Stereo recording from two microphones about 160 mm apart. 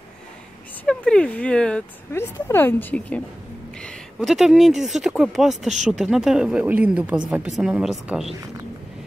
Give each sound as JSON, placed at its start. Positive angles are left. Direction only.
{"t": 0.8, "sound": "a woman's voice", "side_deg": 5}
{"t": 3.8, "sound": "speech", "side_deg": 0}